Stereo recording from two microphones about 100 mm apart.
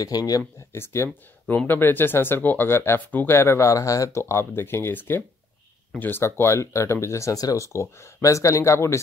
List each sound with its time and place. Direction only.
0.0 s speech: 35° left (ahead or behind)
0.7 s speech: 25° left (ahead or behind)